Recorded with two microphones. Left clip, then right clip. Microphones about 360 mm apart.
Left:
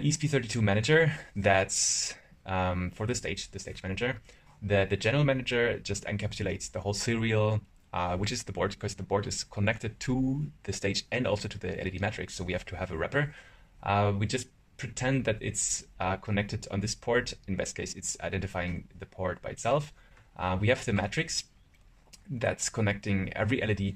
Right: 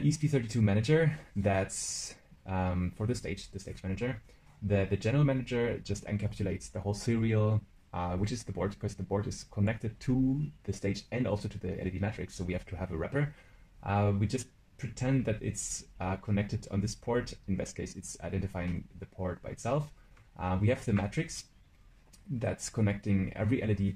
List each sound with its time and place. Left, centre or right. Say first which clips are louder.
0.1 s speech: left 3 dB; left
22.4 s speech: left 5 dB; left